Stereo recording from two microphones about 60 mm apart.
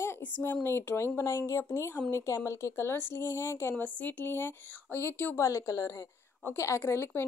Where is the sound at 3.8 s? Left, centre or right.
Left.